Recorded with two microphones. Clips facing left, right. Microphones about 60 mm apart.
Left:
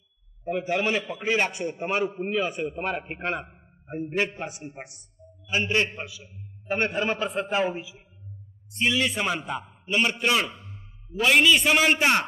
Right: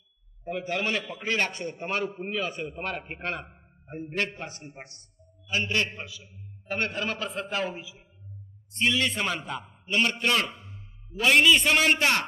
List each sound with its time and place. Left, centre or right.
0.5 s a man's voice: centre
8.7 s a man's voice: centre
12.0 s a man's voice: left